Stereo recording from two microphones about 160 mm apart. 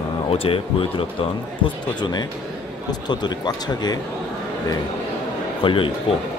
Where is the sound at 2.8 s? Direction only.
25° left (ahead or behind).